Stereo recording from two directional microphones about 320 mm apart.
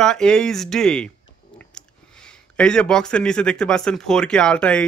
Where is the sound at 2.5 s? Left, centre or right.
Centre.